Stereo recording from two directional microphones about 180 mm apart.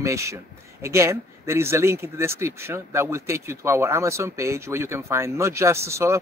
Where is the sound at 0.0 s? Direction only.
15° right (ahead or behind).